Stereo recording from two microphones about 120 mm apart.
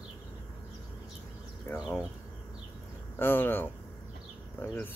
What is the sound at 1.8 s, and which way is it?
Speech, 5° right (ahead or behind).